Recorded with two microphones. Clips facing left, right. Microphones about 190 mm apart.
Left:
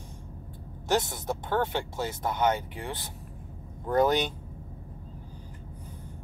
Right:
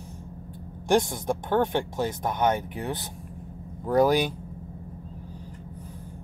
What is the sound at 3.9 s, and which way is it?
Speech, 10° right (ahead or behind).